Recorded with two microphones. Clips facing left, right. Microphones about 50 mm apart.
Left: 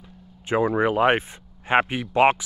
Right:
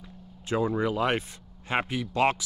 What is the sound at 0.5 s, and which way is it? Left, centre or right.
Speech, left.